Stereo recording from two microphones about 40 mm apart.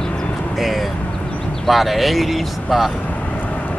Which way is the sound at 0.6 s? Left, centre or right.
Centre.